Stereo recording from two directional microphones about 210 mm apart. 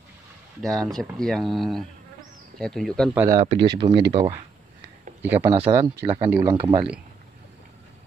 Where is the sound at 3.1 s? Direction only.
10° right (ahead or behind).